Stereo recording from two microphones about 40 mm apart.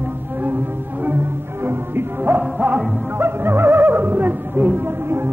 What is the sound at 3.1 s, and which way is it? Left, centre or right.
Music, right.